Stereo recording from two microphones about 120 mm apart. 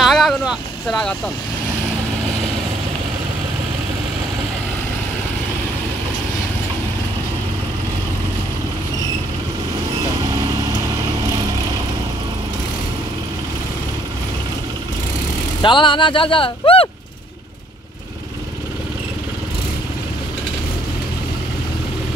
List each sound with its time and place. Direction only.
0.0 s boat: centre (ahead or behind)
15.6 s speech: 40° left (ahead or behind)